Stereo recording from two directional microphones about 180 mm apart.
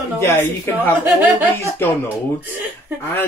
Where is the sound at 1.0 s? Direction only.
10° right (ahead or behind).